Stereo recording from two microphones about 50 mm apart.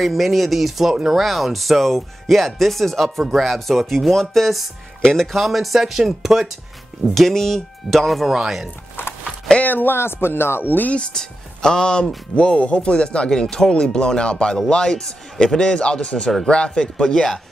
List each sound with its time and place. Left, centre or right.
0.0 s a man's voice: centre
5.3 s speech: centre
9.0 s a sound: left
9.6 s speech: left
9.9 s speech: left
10.9 s a man's voice: centre